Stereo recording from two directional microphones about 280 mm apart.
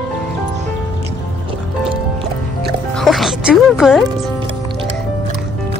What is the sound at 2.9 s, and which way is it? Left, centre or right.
Music, centre.